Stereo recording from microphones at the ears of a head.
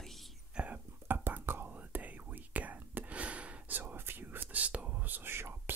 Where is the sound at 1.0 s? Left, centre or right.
Right.